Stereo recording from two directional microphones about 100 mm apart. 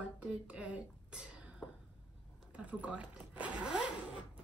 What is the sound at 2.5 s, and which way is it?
Speech, 15° right (ahead or behind).